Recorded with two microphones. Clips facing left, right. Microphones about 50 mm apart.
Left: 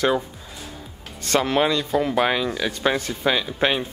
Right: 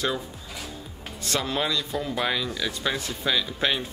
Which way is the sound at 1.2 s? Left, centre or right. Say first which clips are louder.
Left 7 dB; left.